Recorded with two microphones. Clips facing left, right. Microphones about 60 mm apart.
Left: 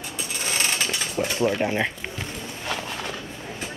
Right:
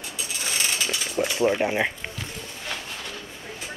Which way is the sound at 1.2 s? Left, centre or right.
Centre.